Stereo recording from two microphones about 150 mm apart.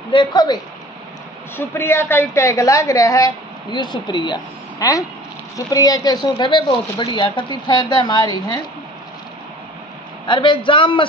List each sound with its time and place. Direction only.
0.1 s a woman's voice: 30° left (ahead or behind)
1.8 s a woman's voice: 15° left (ahead or behind)
10.2 s speech: 30° left (ahead or behind)